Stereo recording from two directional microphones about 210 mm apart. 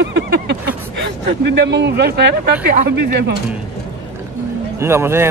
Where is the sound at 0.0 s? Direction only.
55° right (ahead or behind).